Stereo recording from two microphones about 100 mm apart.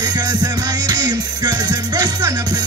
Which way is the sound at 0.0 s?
45° right (ahead or behind).